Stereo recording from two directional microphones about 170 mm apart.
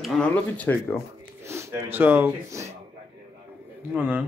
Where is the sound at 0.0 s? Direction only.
5° left (ahead or behind).